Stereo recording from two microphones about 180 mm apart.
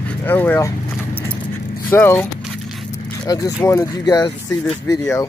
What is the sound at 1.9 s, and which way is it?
Speech, 10° left (ahead or behind).